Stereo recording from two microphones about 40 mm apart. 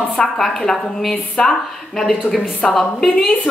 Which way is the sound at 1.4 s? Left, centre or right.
Centre.